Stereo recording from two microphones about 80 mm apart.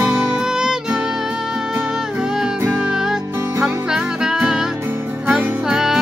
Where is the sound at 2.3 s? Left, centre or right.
Centre.